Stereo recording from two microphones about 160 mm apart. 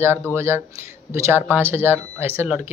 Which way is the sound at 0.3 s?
15° right (ahead or behind).